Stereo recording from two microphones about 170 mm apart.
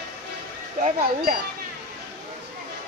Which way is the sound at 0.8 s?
55° right (ahead or behind).